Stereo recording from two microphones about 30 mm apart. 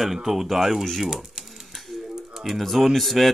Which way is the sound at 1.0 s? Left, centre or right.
Right.